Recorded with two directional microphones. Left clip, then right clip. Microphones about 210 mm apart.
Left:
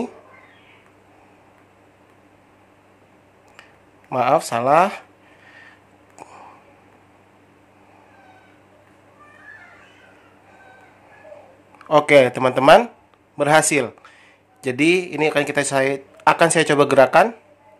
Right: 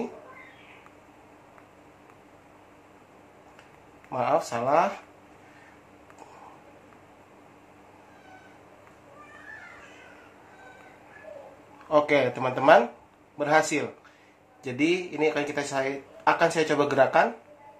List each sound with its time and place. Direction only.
4.1 s speech: 60° left (ahead or behind)
11.9 s speech: 55° left (ahead or behind)